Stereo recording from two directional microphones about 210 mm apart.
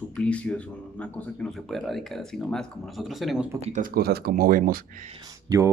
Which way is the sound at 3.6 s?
35° right (ahead or behind).